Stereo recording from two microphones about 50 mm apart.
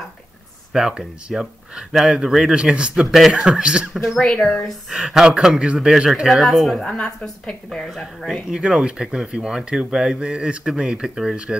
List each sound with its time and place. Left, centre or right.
0.7 s speech: centre
3.1 s speech: centre
3.3 s speech: centre
4.2 s a woman's voice: centre
4.6 s speech: centre
6.2 s speech: centre
7.0 s a woman's voice: centre
7.8 s speech: centre
8.5 s speech: centre